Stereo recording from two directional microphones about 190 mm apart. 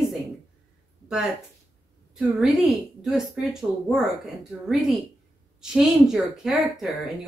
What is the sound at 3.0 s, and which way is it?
Speech, centre (ahead or behind).